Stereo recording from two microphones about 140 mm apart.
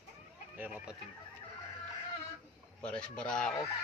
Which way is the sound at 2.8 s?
5° left (ahead or behind).